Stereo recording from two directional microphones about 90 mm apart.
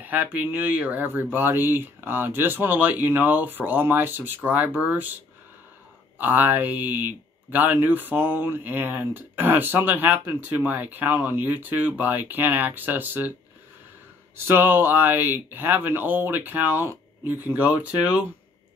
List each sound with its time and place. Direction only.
0.0 s speech: 20° right (ahead or behind)
14.3 s speech: 25° right (ahead or behind)